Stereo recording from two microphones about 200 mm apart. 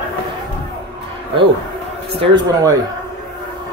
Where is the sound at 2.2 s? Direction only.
20° right (ahead or behind).